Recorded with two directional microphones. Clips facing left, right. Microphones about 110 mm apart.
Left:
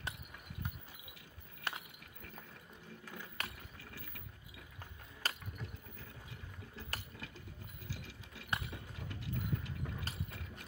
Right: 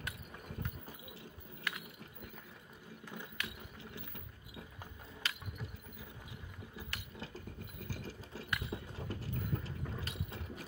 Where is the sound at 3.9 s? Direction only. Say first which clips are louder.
Right 3 dB; 25° right (ahead or behind).